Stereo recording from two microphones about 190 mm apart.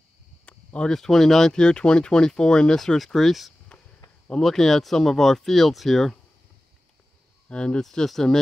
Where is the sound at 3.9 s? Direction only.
15° left (ahead or behind).